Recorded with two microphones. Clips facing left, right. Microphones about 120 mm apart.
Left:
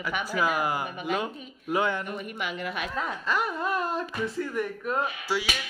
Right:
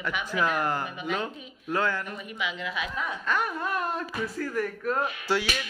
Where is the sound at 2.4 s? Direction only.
50° left (ahead or behind).